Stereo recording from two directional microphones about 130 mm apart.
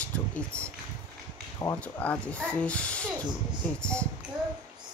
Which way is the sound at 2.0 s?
10° left (ahead or behind).